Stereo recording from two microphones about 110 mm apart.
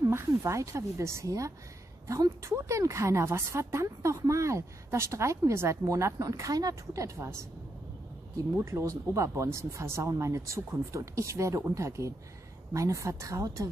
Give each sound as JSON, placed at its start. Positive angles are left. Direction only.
{"t": 0.1, "sound": "a woman's voice", "side_deg": -25}
{"t": 8.5, "sound": "a woman's voice", "side_deg": -25}